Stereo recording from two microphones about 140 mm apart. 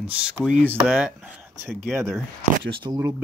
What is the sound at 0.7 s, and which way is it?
Speech, 5° right (ahead or behind).